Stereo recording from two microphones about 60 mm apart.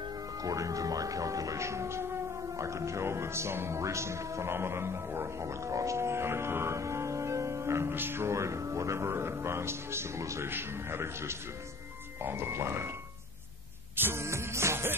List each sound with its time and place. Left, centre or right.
0.4 s speech: right
13.9 s music: right
14.2 s speech: right